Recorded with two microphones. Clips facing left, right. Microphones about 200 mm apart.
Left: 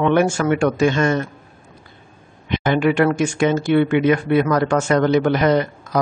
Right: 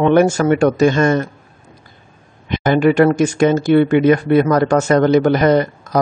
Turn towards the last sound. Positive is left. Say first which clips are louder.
# right 3 dB
turn(degrees=-40)  # may be behind; listen again after turning